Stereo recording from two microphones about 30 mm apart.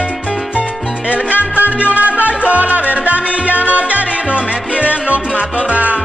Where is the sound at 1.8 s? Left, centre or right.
Right.